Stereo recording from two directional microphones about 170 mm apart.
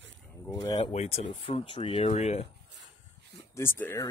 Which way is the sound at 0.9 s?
35° left (ahead or behind).